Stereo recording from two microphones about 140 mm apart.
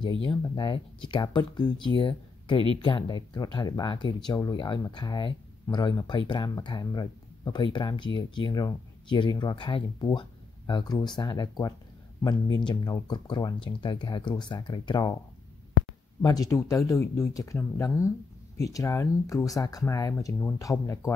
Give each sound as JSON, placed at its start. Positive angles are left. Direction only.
{"t": 0.0, "sound": "speech", "side_deg": 35}
{"t": 16.2, "sound": "speech", "side_deg": 25}